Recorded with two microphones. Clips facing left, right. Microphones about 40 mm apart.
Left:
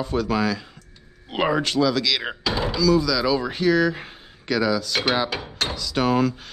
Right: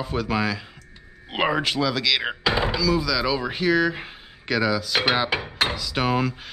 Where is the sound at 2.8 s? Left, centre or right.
Centre.